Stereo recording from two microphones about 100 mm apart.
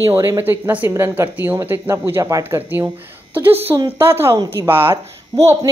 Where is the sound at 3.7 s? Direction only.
40° right (ahead or behind).